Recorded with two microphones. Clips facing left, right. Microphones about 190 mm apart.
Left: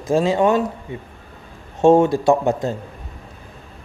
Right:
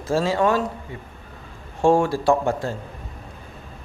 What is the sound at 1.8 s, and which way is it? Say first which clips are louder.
Speech: left 5 dB; 20° left (ahead or behind).